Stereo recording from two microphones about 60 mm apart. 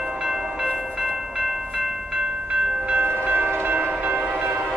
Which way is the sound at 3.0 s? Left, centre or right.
Right.